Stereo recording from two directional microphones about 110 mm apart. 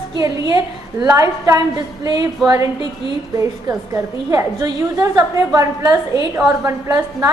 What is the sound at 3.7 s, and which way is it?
A woman's voice, 30° right (ahead or behind).